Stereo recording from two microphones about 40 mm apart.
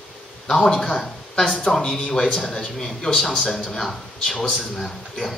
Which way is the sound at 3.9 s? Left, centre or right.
Centre.